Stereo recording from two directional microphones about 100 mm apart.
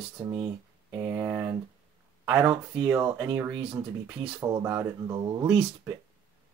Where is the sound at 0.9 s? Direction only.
25° right (ahead or behind).